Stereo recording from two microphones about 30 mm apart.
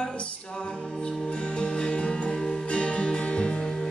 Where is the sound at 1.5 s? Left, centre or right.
Left.